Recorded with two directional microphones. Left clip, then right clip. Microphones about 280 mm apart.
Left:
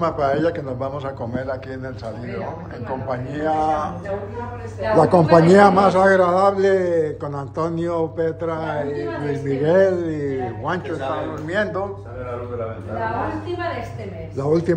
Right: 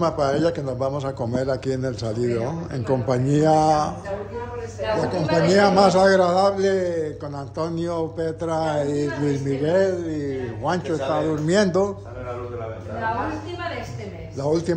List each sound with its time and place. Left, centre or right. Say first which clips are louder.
0.0 s a man's voice: left 1 dB; centre
5.0 s a man's voice: left 8 dB; centre
11.4 s speech: right 2 dB; right
14.4 s a man's voice: left 3 dB; centre